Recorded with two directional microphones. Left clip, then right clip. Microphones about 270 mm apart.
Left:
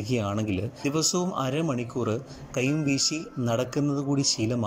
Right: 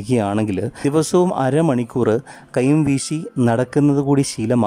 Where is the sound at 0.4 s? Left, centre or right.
Centre.